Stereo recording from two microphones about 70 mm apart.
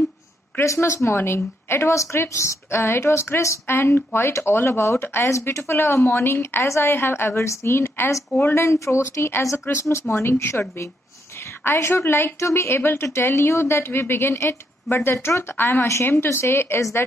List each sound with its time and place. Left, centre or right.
0.6 s a woman's voice: left
11.6 s a woman's voice: left